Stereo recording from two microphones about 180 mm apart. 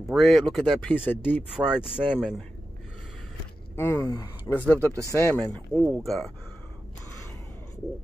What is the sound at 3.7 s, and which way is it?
Speech, 15° left (ahead or behind).